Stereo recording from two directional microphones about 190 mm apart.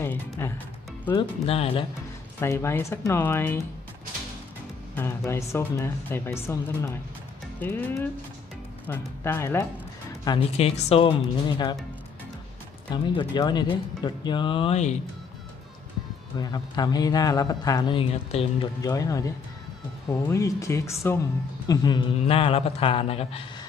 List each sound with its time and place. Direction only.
0.0 s speech: 10° left (ahead or behind)
1.1 s a man's voice: 30° left (ahead or behind)
2.4 s speech: 15° left (ahead or behind)
4.9 s a man's voice: 15° left (ahead or behind)
10.6 s a man's voice: 35° left (ahead or behind)
12.9 s a man's voice: 25° left (ahead or behind)
16.3 s a man's voice: 20° left (ahead or behind)
18.8 s a man's voice: 20° left (ahead or behind)